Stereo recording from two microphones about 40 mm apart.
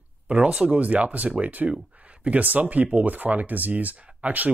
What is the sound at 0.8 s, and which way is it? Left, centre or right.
Speech, right.